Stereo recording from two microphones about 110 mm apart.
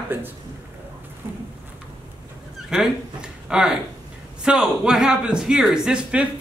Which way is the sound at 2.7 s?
5° right (ahead or behind).